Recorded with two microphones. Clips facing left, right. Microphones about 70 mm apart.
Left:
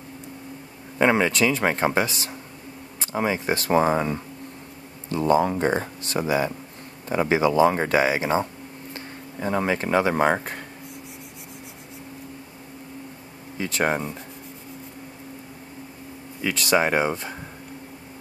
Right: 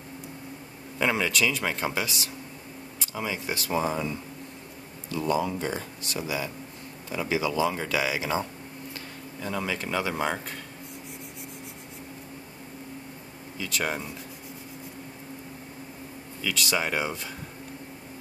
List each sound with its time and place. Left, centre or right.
0.9 s speech: left
13.6 s speech: left
16.3 s speech: left